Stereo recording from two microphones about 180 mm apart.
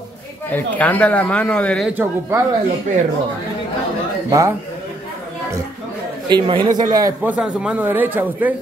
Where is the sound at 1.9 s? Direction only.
10° right (ahead or behind).